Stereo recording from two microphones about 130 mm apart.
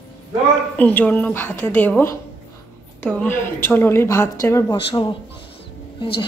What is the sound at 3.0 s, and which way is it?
A woman's voice, 15° left (ahead or behind).